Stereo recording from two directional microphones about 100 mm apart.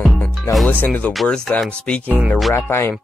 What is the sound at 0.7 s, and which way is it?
Speech, 15° left (ahead or behind).